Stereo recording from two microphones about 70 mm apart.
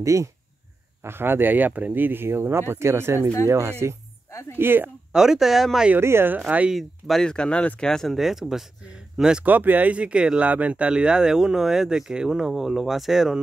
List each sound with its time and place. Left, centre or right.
0.0 s speech: right
1.0 s speech: right
4.6 s speech: right
5.1 s speech: centre
5.9 s speech: right
6.7 s speech: centre
7.9 s speech: centre
9.4 s speech: right; by 13.4 s centre